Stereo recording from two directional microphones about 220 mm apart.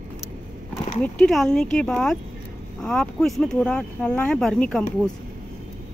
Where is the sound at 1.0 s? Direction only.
5° left (ahead or behind).